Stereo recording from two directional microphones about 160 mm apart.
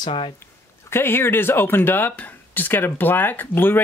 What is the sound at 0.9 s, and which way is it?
Speech, 15° left (ahead or behind).